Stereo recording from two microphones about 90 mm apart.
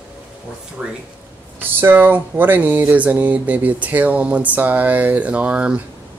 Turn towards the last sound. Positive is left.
turn(degrees=-15)  # may be behind; listen again after turning